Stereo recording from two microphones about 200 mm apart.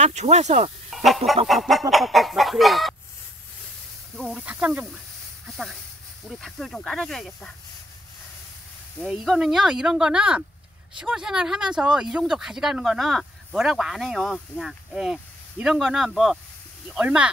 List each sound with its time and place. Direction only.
0.0 s speech: 35° right (ahead or behind)
0.8 s speech: centre (ahead or behind)
4.2 s speech: 5° right (ahead or behind)
6.2 s speech: centre (ahead or behind)
9.0 s speech: centre (ahead or behind)